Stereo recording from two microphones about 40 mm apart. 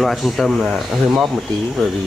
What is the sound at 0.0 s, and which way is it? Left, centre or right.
Speech, centre.